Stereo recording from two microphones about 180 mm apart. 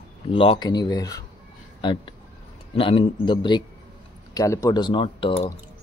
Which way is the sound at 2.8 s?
30° left (ahead or behind).